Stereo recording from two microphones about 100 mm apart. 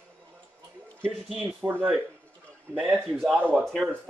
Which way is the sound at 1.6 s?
20° right (ahead or behind).